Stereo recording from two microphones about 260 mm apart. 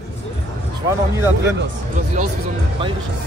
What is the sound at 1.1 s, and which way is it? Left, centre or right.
Speech, centre.